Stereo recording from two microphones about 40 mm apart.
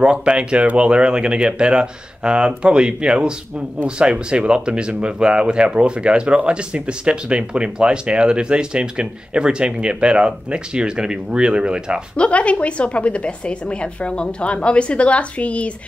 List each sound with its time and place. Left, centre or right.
0.0 s speech: right
12.2 s a woman's voice: left